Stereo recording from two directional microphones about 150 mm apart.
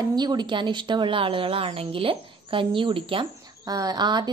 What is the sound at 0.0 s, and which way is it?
Speech, 30° right (ahead or behind).